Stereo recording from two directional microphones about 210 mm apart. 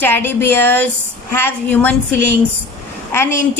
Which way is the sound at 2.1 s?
55° right (ahead or behind).